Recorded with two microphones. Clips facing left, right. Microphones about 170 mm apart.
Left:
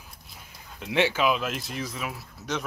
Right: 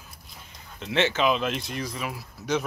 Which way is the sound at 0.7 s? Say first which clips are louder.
Even; 10° left (ahead or behind).